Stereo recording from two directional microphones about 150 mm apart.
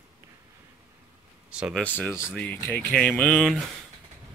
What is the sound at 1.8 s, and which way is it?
Speech, 10° left (ahead or behind).